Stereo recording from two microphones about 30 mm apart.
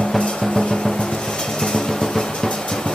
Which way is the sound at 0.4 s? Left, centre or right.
Left.